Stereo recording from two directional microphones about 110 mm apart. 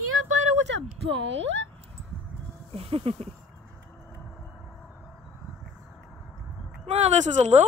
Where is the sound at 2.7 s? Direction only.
60° right (ahead or behind).